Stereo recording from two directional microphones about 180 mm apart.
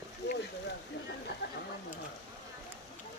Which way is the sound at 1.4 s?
70° left (ahead or behind).